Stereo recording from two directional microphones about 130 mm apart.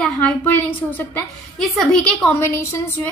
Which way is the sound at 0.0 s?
10° left (ahead or behind).